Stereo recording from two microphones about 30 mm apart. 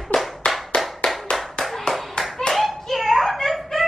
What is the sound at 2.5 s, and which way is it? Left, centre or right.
Hands, centre.